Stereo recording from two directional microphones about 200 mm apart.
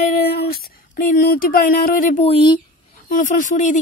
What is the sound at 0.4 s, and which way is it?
Speech, 50° left (ahead or behind).